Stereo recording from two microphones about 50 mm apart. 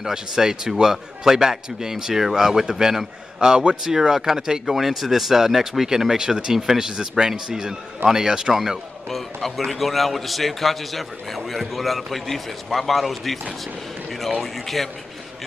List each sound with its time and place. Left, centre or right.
0.0 s a man's voice: centre
9.1 s a man's voice: centre